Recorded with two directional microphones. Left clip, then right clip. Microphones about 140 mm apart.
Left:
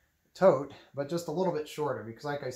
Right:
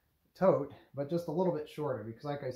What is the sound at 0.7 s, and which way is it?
Speech, 10° right (ahead or behind).